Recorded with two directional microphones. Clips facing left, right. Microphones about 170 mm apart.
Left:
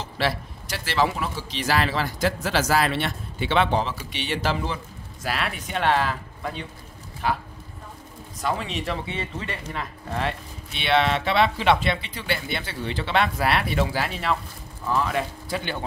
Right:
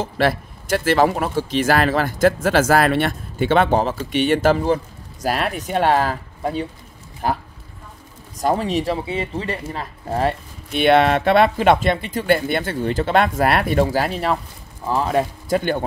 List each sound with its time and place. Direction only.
0.0 s speech: 50° right (ahead or behind)